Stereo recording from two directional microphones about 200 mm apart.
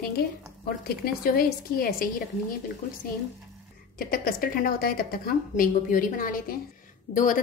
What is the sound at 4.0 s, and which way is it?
A woman's voice, 45° left (ahead or behind).